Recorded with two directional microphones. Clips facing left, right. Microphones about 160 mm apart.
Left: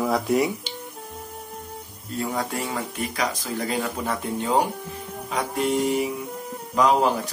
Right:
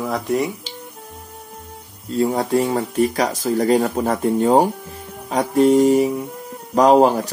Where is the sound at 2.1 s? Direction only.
30° right (ahead or behind).